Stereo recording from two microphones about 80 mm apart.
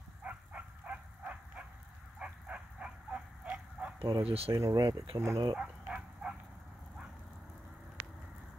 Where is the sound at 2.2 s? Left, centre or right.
Centre.